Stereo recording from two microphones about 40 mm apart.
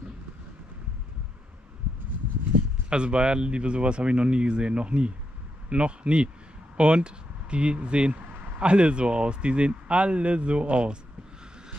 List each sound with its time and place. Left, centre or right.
2.9 s speech: right
8.3 s a sound: right
8.5 s speech: right